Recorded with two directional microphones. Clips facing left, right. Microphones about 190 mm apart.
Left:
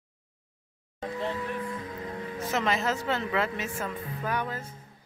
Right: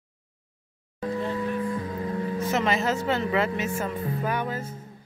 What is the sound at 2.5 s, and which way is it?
Speech, centre (ahead or behind).